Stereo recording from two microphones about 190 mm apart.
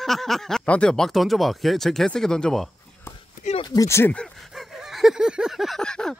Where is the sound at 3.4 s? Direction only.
35° left (ahead or behind).